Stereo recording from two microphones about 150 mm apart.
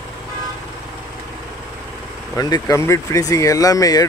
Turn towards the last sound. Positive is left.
turn(degrees=25)  # may be behind; listen again after turning